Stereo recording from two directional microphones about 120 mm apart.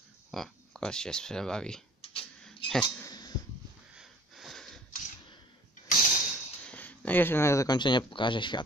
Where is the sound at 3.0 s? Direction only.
35° left (ahead or behind).